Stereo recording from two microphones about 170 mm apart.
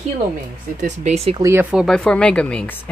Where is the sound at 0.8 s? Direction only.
40° right (ahead or behind).